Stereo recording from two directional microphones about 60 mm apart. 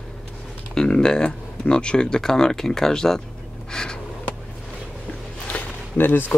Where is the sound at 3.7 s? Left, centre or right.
Centre.